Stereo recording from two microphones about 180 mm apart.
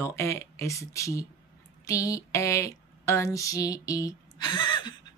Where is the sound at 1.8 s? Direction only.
20° left (ahead or behind).